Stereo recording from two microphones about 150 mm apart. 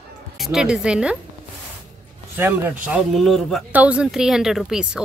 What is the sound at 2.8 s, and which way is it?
A woman's voice, centre (ahead or behind).